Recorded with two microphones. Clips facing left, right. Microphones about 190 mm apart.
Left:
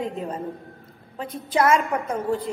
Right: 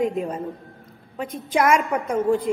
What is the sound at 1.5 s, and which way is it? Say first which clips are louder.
A woman's voice: right 1 dB; 10° right (ahead or behind).